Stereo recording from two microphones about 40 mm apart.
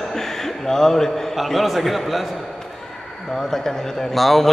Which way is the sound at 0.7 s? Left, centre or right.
Centre.